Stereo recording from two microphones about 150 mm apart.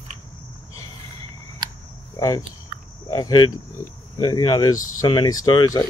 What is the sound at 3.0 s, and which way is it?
Speech, 25° left (ahead or behind).